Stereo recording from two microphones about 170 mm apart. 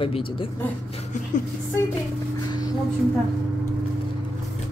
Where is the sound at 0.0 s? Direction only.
30° left (ahead or behind).